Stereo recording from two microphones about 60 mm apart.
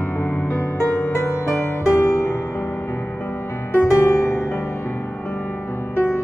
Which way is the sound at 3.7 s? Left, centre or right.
Left.